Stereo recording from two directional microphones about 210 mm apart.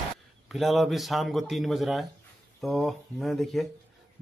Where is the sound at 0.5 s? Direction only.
Centre (ahead or behind).